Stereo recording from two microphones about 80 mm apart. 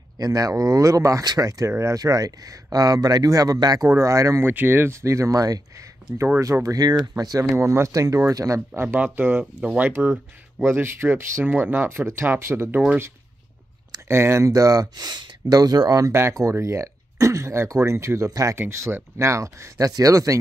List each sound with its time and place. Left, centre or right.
0.2 s speech: right
3.8 s speech: right
4.5 s speech: right
6.1 s speech: right
6.4 s speech: right
7.5 s speech: right
8.8 s speech: right
14.0 s speech: right
16.1 s speech: right
18.6 s speech: right